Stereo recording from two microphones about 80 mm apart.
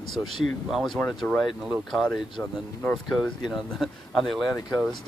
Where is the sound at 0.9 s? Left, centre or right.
Centre.